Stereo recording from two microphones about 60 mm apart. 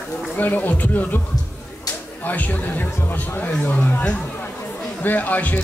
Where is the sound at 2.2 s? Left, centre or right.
Left.